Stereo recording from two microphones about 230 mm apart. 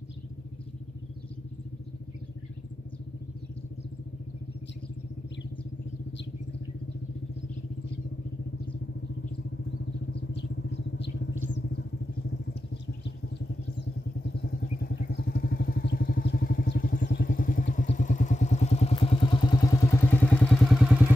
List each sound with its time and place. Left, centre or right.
14.4 s vehicle: left; by 21.0 s centre